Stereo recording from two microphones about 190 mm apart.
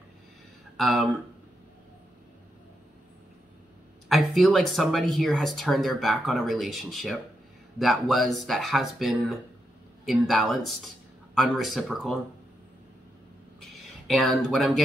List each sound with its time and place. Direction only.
0.7 s speech: centre (ahead or behind)
4.1 s speech: centre (ahead or behind)
13.6 s a sound: centre (ahead or behind)